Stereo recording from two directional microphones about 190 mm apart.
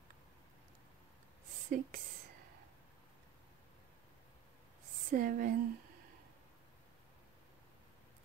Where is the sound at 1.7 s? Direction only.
45° right (ahead or behind).